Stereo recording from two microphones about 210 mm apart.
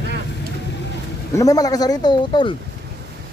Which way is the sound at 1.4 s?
15° left (ahead or behind).